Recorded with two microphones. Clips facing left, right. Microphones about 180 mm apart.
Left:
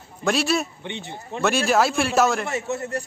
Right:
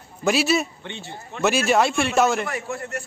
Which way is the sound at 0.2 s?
5° right (ahead or behind).